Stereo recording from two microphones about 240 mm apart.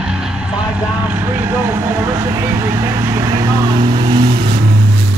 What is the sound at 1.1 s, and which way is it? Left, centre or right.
Vehicle, centre.